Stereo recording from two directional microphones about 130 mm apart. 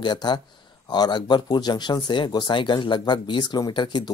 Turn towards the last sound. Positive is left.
turn(degrees=35)  # may be behind; listen again after turning